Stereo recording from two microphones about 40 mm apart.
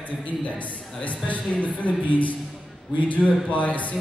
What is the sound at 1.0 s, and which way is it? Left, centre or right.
A man's voice, left.